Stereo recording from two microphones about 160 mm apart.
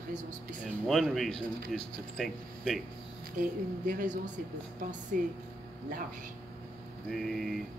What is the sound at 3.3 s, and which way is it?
A woman's voice, 55° right (ahead or behind).